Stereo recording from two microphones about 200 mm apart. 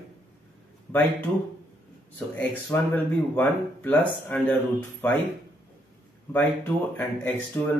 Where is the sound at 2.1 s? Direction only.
10° left (ahead or behind).